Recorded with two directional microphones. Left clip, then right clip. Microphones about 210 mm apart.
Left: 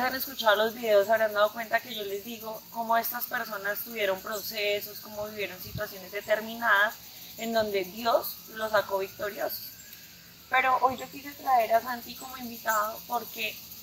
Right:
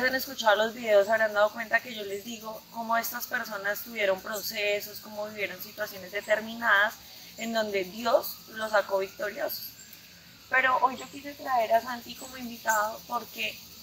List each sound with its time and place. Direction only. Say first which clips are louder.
0.0 s speech: right 1 dB; 5° right (ahead or behind)
10.5 s speech: even; 5° right (ahead or behind)